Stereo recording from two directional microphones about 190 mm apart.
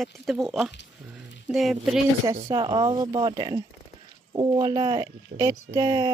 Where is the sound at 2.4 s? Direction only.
25° right (ahead or behind).